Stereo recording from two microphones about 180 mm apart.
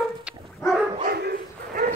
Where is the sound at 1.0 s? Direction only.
60° right (ahead or behind).